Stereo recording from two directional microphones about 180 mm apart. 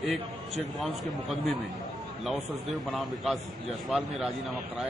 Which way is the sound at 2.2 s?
Centre (ahead or behind).